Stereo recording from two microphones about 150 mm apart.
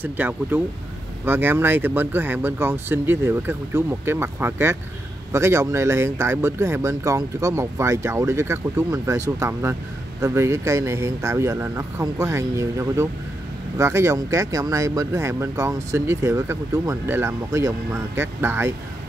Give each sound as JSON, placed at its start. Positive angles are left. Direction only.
{"t": 0.0, "sound": "speech", "side_deg": -15}